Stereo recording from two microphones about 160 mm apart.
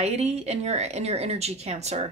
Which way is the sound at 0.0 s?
45° right (ahead or behind).